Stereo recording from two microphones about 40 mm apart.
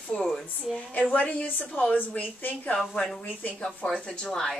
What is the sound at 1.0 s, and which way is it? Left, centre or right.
Speech, left.